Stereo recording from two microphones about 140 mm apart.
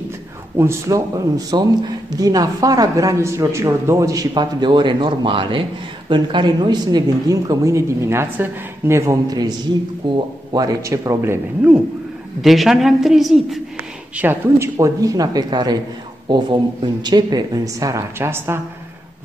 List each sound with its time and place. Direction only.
0.6 s speech: 20° right (ahead or behind)
12.4 s a woman's voice: centre (ahead or behind)
14.1 s speech: 15° right (ahead or behind)